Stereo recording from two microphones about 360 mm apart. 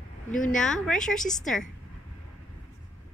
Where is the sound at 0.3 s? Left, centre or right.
Left.